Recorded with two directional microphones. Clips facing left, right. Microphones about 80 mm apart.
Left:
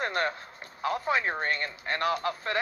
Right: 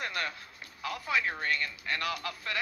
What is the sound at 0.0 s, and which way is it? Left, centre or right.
Music, left.